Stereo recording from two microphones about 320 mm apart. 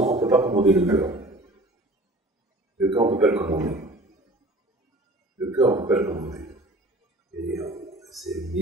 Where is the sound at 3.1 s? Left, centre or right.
Centre.